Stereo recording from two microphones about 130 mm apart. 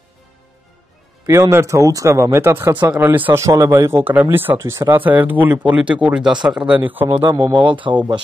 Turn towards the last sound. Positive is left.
turn(degrees=-40)  # may be behind; listen again after turning